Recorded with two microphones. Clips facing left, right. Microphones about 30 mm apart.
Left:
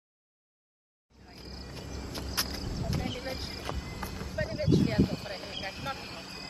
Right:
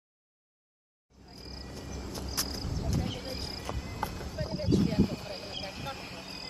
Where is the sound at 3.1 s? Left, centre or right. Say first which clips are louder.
Left 1 dB; centre.